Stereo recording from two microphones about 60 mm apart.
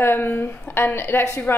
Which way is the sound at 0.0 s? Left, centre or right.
Left.